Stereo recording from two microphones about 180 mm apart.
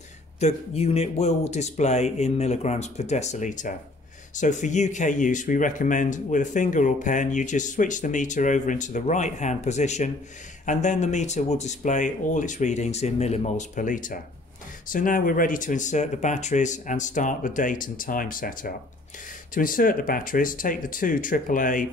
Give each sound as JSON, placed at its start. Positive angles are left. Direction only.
{"t": 0.4, "sound": "speech", "side_deg": 35}